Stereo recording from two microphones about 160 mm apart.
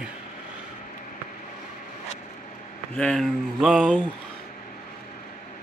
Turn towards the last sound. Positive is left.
turn(degrees=0)  # may be behind; listen again after turning